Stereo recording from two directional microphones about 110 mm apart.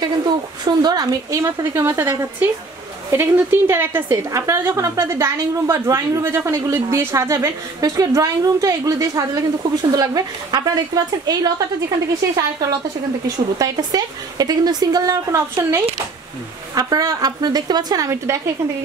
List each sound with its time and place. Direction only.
0.7 s a woman's voice: 40° right (ahead or behind)
1.4 s a woman's voice: 25° right (ahead or behind)
13.6 s a woman's voice: 35° right (ahead or behind)